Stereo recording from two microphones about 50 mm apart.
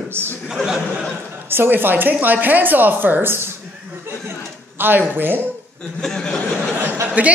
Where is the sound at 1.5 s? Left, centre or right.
Right.